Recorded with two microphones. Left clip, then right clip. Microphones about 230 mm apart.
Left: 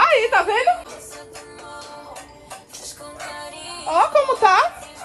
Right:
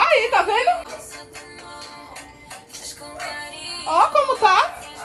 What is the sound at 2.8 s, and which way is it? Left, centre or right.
Music, centre.